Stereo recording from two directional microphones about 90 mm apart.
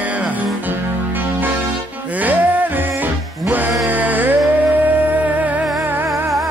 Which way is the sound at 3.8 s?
20° right (ahead or behind).